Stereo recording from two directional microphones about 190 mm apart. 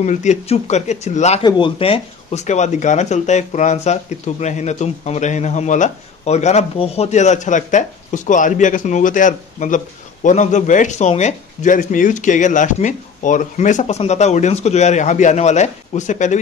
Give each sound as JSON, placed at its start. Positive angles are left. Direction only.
{"t": 0.0, "sound": "speech", "side_deg": 40}